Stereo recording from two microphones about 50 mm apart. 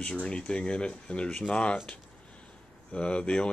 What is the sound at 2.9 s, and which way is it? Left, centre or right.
Speech, left.